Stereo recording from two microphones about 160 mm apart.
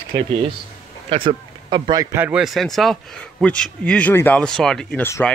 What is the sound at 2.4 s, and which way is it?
Speech, centre (ahead or behind).